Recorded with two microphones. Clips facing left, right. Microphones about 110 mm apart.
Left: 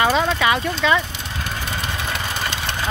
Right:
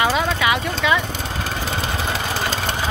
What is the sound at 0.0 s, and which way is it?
Horse, 10° right (ahead or behind).